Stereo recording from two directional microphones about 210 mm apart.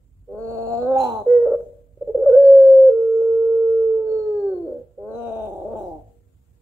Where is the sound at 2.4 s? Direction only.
5° left (ahead or behind).